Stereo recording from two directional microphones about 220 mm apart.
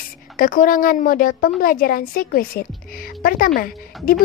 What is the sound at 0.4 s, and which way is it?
A woman's voice, 40° left (ahead or behind).